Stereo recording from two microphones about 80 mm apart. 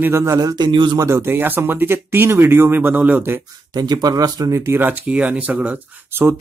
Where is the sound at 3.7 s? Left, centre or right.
Right.